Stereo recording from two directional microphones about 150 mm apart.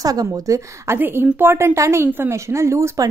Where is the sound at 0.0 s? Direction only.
25° right (ahead or behind).